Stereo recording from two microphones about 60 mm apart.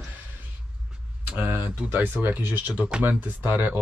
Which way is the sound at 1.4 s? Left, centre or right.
Right.